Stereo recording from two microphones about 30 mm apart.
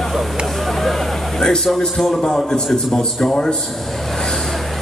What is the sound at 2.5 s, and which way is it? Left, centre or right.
Speech, centre.